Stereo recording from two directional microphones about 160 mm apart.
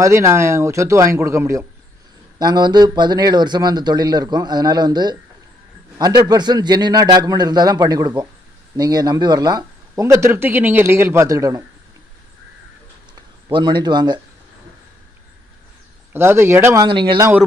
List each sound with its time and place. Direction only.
0.0 s speech: 20° right (ahead or behind)
13.1 s speech: 30° right (ahead or behind)
16.1 s speech: 15° right (ahead or behind)
16.8 s speech: 30° right (ahead or behind)